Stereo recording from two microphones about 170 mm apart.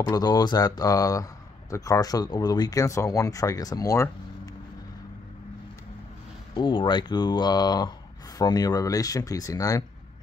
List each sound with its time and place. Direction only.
0.0 s a man's voice: 25° left (ahead or behind)
6.5 s a man's voice: 30° left (ahead or behind)